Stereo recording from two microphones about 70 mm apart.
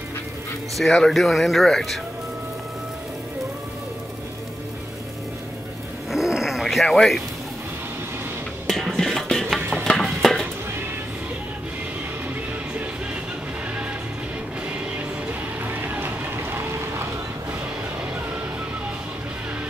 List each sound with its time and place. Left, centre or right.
0.7 s speech: centre
6.1 s dog: centre
8.9 s music: centre
9.8 s a sound: centre
15.6 s vehicle: right